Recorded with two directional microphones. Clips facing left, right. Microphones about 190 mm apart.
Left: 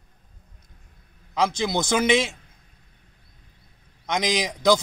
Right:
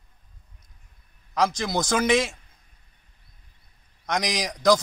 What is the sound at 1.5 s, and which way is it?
Speech, 25° left (ahead or behind).